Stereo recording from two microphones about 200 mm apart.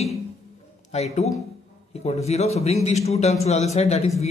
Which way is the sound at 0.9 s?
35° left (ahead or behind).